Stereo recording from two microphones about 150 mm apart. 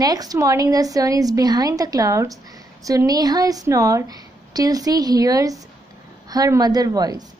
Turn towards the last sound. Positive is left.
turn(degrees=-25)  # may be behind; listen again after turning